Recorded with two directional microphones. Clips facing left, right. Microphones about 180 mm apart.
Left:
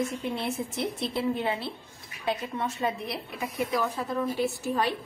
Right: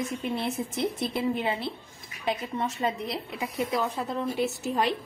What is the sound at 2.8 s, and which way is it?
A woman's voice, 20° right (ahead or behind).